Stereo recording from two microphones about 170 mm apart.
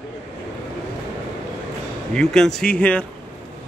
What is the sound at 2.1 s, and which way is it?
Speech, 5° left (ahead or behind).